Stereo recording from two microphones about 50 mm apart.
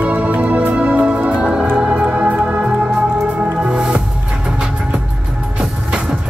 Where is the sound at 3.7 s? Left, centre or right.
Centre.